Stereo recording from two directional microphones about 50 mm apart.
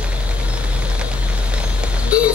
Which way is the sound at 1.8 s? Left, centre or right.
Right.